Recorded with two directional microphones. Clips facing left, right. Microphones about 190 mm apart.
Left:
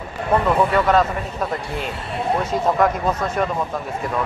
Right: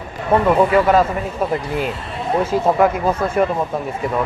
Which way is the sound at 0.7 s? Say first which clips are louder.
Right 3 dB; 5° right (ahead or behind).